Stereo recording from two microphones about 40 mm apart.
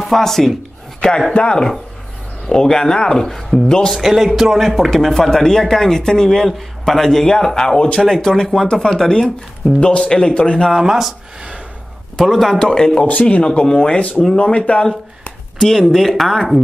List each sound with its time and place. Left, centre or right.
0.0 s speech: centre
1.3 s a man's voice: left
3.3 s speech: centre
3.6 s speech: centre
3.9 s a man's voice: centre; by 10.7 s left
10.8 s a man's voice: centre
12.2 s speech: centre
13.0 s speech: left
13.6 s a man's voice: centre
13.9 s speech: left
14.2 s speech: centre
14.5 s speech: left
15.6 s speech: centre